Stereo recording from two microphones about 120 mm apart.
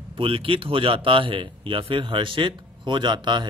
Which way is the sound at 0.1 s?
50° right (ahead or behind).